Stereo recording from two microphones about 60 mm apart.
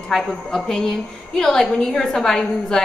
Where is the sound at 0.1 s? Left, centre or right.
Centre.